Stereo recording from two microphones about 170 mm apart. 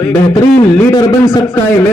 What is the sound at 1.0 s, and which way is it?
Speech, 25° left (ahead or behind).